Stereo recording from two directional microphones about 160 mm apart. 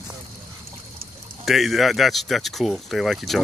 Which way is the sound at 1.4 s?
Centre (ahead or behind).